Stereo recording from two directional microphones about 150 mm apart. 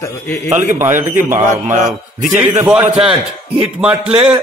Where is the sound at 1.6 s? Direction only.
55° right (ahead or behind).